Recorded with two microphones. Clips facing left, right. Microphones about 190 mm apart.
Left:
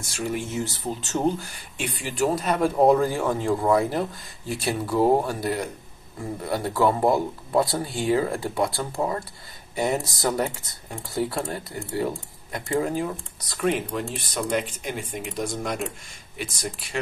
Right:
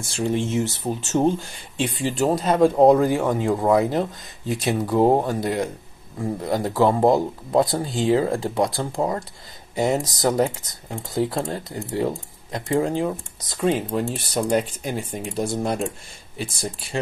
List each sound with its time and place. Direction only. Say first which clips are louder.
0.0 s speech: right 5 dB; 30° right (ahead or behind)
13.8 s speech: right 5 dB; 35° right (ahead or behind)